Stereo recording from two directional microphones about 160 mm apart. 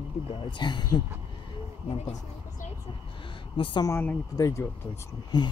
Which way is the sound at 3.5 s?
30° left (ahead or behind).